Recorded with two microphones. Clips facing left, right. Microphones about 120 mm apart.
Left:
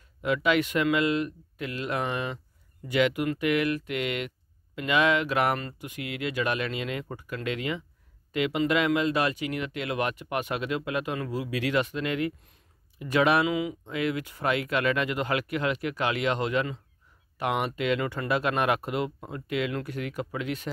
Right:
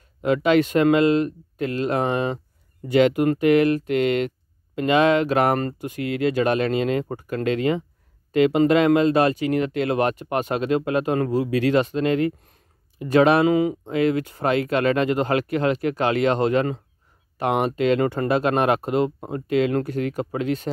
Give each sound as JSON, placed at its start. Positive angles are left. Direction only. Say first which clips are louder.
{"t": 0.2, "sound": "speech", "louder": "right 7 dB", "side_deg": -35}